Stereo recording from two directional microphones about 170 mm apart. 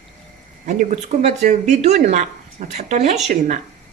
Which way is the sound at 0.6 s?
45° right (ahead or behind).